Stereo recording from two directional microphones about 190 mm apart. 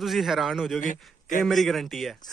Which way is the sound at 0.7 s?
45° left (ahead or behind).